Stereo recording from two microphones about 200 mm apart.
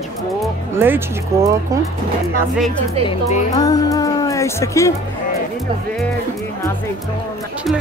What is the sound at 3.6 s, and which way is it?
Speech, 20° left (ahead or behind).